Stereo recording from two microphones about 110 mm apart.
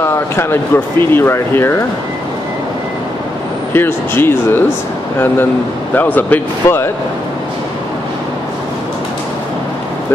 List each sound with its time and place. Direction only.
0.0 s speech: 20° left (ahead or behind)
3.7 s speech: 20° left (ahead or behind)
5.9 s speech: 15° left (ahead or behind)